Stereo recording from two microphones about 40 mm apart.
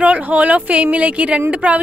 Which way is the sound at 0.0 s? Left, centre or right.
Right.